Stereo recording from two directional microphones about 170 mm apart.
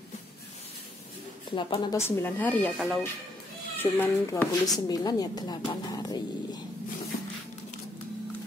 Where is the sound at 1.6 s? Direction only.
30° left (ahead or behind).